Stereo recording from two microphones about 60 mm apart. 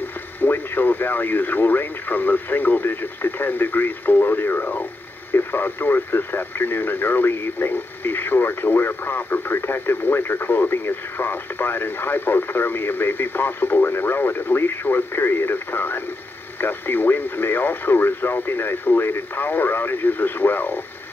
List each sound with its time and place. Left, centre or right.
0.4 s speech: left